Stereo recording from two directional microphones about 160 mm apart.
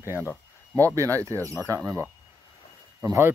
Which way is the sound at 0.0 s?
15° right (ahead or behind).